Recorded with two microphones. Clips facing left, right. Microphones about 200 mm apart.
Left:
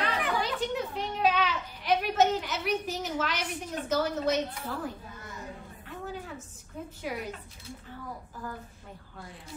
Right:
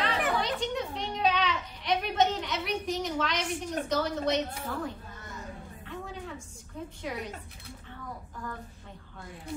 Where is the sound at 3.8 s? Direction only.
5° left (ahead or behind).